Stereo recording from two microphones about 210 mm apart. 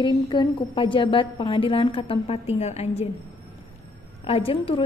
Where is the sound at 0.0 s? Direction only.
20° left (ahead or behind).